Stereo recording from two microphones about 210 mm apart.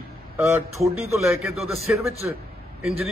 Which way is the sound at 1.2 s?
Centre (ahead or behind).